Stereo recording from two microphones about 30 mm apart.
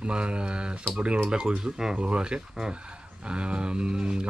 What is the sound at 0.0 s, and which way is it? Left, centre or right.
Speech, right.